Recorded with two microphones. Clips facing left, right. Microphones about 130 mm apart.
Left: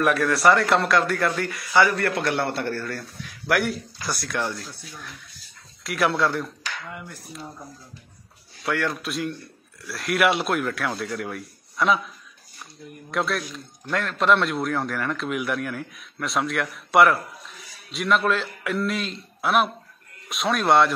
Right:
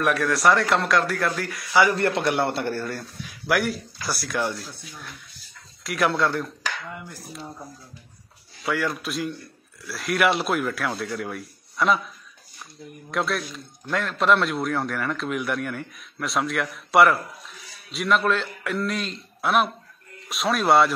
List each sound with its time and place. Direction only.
0.0 s a man's voice: centre (ahead or behind)
1.8 s a man's voice: 20° right (ahead or behind)
3.4 s a man's voice: centre (ahead or behind)
8.6 s a man's voice: centre (ahead or behind)
13.1 s a man's voice: centre (ahead or behind)